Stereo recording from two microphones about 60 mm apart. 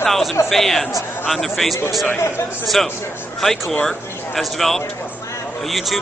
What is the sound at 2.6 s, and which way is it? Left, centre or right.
A man's voice, centre.